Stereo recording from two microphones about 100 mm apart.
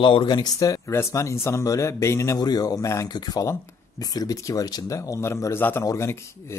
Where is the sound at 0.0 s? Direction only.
55° left (ahead or behind).